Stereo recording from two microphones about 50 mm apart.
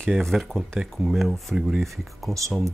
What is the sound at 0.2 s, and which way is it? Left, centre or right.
Speech, centre.